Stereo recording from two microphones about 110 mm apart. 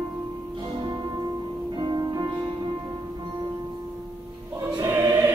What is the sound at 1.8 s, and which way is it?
Music, 40° right (ahead or behind).